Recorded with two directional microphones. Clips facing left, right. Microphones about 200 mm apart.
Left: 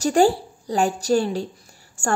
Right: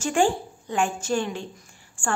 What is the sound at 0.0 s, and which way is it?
A woman's voice, 40° left (ahead or behind).